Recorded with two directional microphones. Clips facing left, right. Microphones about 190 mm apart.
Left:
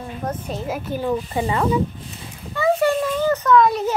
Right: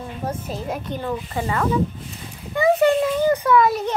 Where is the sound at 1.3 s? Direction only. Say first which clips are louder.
Left 2 dB; 20° left (ahead or behind).